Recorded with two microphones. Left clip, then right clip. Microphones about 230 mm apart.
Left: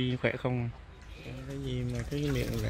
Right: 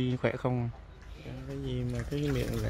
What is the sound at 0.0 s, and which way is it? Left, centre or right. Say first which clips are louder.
Speech: even; centre.